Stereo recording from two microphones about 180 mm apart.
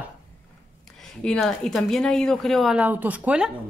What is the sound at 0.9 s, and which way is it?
A woman's voice, 5° left (ahead or behind).